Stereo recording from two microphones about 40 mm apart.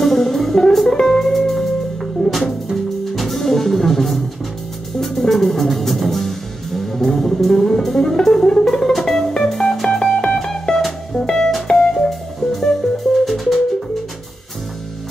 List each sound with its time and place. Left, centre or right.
0.0 s music: centre